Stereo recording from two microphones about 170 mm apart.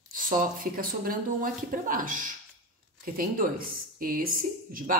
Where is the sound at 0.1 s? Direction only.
55° right (ahead or behind).